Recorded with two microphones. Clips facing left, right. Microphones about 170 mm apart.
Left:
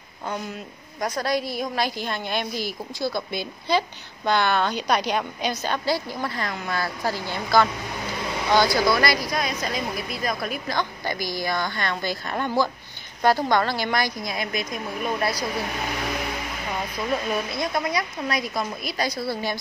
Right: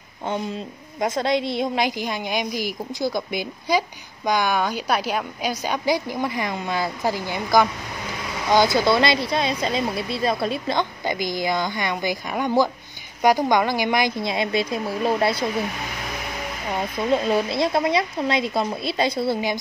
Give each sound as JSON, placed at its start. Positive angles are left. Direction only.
{"t": 1.0, "sound": "a woman's voice", "side_deg": -25}
{"t": 17.1, "sound": "speech", "side_deg": -30}